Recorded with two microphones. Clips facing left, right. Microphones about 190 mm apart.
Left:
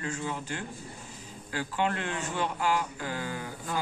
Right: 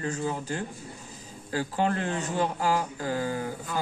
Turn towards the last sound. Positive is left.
turn(degrees=-40)  # may be behind; listen again after turning